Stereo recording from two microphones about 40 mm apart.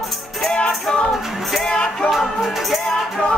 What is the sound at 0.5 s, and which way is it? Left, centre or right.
Music, centre.